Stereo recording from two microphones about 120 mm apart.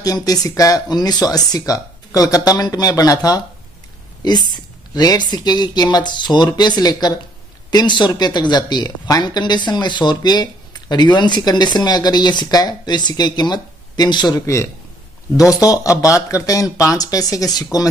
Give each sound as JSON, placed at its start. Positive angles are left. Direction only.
{"t": 0.0, "sound": "speech", "side_deg": 30}
{"t": 14.4, "sound": "speech", "side_deg": 25}